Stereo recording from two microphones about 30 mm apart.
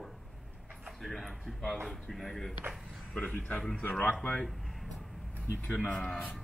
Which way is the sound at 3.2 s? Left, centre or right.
Left.